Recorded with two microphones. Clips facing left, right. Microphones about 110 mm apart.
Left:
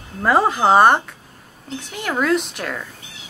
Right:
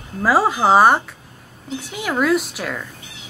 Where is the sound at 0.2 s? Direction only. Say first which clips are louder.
Even; 5° right (ahead or behind).